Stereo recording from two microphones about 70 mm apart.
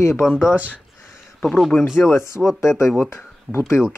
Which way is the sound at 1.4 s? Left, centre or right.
Centre.